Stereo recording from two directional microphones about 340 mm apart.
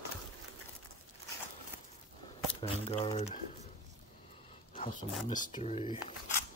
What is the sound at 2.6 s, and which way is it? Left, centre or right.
Speech, centre.